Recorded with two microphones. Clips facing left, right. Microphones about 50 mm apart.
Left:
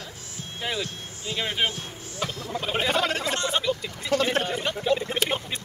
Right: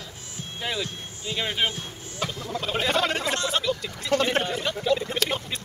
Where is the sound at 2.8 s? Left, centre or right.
Centre.